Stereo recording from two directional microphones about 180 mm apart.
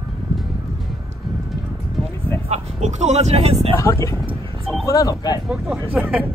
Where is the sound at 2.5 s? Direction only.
40° right (ahead or behind).